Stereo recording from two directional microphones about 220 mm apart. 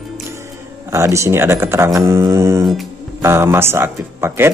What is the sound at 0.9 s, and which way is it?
Speech, 15° right (ahead or behind).